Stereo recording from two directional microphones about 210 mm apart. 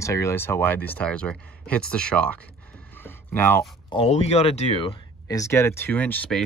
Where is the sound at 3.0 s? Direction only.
10° left (ahead or behind).